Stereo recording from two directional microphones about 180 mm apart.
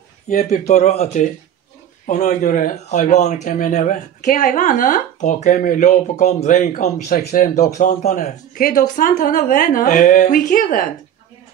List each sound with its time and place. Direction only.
0.3 s speech: 40° left (ahead or behind)